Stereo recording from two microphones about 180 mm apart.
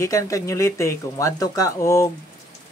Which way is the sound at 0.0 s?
15° left (ahead or behind).